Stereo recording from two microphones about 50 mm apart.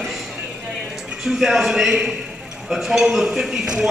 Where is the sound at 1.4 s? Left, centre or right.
Centre.